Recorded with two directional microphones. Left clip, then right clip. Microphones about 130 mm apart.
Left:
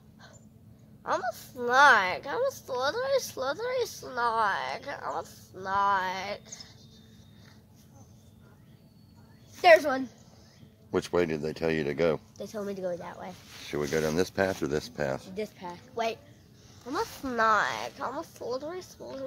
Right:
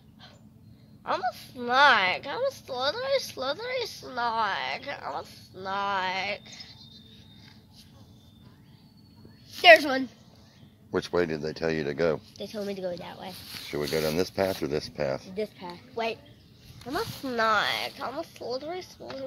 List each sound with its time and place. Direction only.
1.0 s a woman's voice: 30° left (ahead or behind)
9.8 s speech: centre (ahead or behind)
10.9 s speech: 15° left (ahead or behind)
12.4 s speech: 25° left (ahead or behind)
15.3 s a woman's voice: 25° right (ahead or behind)
16.9 s speech: 10° right (ahead or behind); by 19.2 s 20° left (ahead or behind)